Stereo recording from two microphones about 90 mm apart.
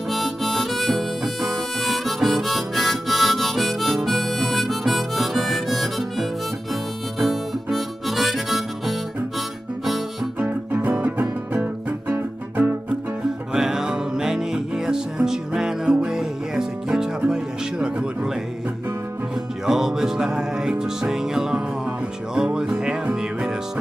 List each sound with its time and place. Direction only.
0.1 s harmonica: centre (ahead or behind)
10.4 s music: 20° right (ahead or behind)
13.5 s music: 5° right (ahead or behind)
19.6 s music: 5° right (ahead or behind)